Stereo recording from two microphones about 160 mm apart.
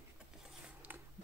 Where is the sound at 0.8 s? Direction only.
10° right (ahead or behind).